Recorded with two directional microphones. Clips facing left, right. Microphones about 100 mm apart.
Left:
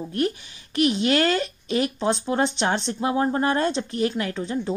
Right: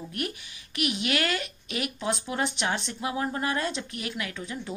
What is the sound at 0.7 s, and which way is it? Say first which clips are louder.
Speech: left 8 dB; 35° left (ahead or behind).